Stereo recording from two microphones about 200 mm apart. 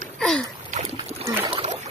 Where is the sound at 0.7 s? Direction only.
35° right (ahead or behind).